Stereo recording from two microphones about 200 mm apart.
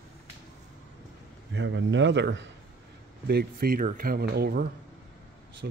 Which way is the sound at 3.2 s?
50° right (ahead or behind).